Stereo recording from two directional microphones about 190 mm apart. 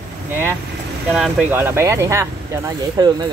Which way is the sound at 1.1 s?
5° right (ahead or behind).